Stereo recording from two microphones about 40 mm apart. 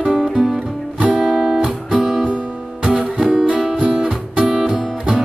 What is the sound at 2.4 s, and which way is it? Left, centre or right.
Music, right.